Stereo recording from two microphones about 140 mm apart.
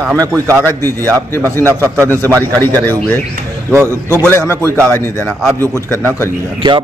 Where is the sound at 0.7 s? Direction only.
15° left (ahead or behind).